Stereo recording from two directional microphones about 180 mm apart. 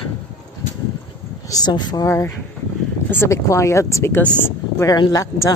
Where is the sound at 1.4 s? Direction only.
20° left (ahead or behind).